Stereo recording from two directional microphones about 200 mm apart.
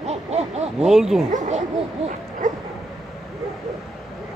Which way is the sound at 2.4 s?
40° right (ahead or behind).